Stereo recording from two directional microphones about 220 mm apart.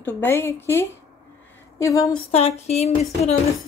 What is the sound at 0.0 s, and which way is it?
Speech, 10° left (ahead or behind).